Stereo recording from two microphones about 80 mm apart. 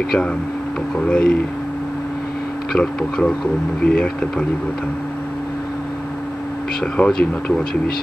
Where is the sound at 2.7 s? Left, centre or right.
Centre.